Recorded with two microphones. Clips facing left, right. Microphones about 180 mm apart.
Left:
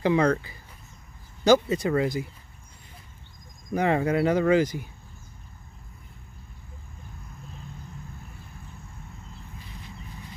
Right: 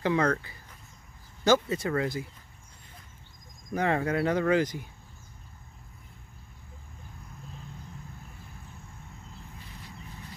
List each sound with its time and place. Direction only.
0.0 s speech: 15° left (ahead or behind)
3.7 s speech: 10° left (ahead or behind)